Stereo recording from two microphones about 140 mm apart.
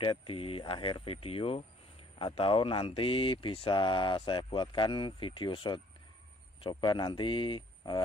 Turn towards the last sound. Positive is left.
turn(degrees=35)  # may be behind; listen again after turning